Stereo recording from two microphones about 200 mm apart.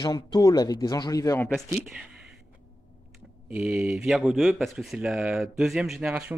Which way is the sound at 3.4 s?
5° right (ahead or behind).